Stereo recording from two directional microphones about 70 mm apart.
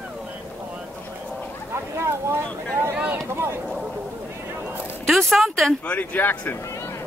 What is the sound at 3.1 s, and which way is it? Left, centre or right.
Speech, right.